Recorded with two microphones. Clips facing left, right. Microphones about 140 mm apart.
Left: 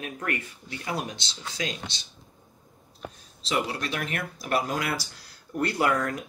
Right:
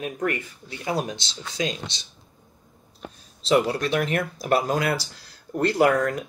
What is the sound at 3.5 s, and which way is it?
Speech, 45° right (ahead or behind).